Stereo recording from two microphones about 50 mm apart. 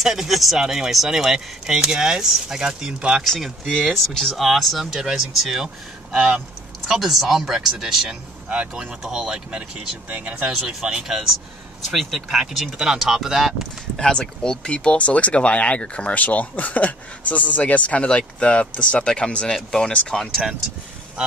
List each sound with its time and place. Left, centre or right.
0.0 s speech: centre
3.3 s speech: centre
6.9 s speech: centre
8.5 s speech: right
9.0 s speech: centre
13.9 s speech: centre
19.5 s speech: centre